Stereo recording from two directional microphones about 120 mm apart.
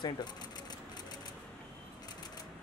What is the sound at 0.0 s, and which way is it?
Speech, 35° left (ahead or behind).